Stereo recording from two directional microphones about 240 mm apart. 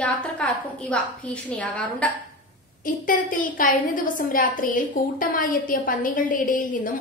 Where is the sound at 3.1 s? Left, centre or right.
Left.